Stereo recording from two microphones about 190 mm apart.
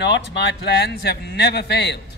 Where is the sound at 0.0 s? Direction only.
65° left (ahead or behind).